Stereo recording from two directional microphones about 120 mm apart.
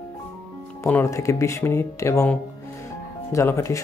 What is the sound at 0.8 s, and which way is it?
Speech, 20° left (ahead or behind).